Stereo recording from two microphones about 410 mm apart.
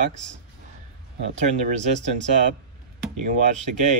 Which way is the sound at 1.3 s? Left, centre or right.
Centre.